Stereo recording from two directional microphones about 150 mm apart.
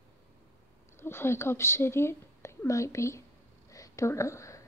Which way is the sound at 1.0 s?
15° left (ahead or behind).